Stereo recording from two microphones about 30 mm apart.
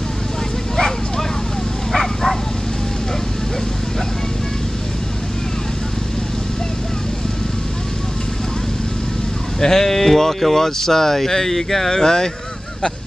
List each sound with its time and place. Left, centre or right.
0.7 s dog: left
1.9 s dog: centre
9.6 s speech: centre
11.9 s speech: left